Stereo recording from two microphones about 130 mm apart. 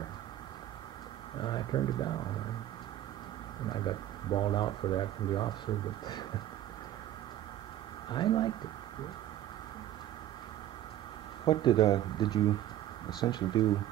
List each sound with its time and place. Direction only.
1.4 s speech: 35° left (ahead or behind)
3.7 s speech: 35° left (ahead or behind)
8.1 s speech: 35° left (ahead or behind)
11.4 s speech: 35° left (ahead or behind)